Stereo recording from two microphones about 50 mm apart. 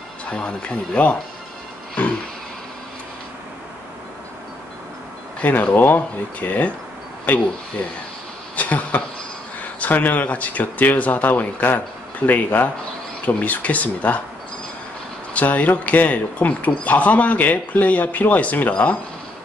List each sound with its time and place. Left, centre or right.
0.2 s speech: left
5.4 s speech: left
8.5 s a sound: left
9.6 s speech: left
15.3 s speech: left